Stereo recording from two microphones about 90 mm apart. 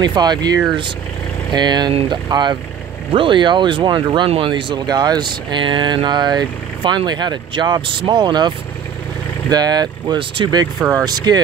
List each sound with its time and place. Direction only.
0.0 s speech: 55° right (ahead or behind)
3.1 s speech: 65° right (ahead or behind); by 11.4 s 50° right (ahead or behind)